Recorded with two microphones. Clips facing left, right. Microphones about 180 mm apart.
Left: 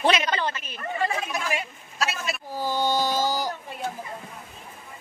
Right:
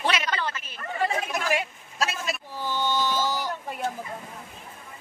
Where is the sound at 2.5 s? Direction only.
40° left (ahead or behind).